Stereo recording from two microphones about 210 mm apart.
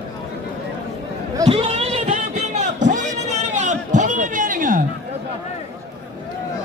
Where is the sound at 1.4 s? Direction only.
30° right (ahead or behind).